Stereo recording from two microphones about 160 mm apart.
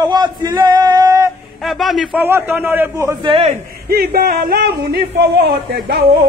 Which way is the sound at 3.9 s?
75° right (ahead or behind).